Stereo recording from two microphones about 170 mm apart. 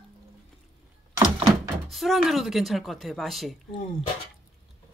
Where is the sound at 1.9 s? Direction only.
Centre (ahead or behind).